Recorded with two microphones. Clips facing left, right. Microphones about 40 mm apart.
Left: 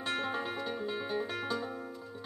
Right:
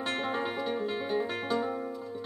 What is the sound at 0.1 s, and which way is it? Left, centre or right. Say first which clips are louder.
Music: right 1 dB; right.